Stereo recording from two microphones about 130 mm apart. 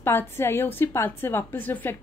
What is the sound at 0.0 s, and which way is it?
A woman's voice, 20° left (ahead or behind).